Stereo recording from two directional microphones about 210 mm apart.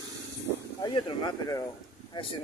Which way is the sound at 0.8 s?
20° left (ahead or behind).